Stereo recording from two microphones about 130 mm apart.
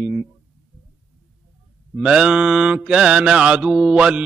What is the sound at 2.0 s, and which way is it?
Mantra, 5° right (ahead or behind).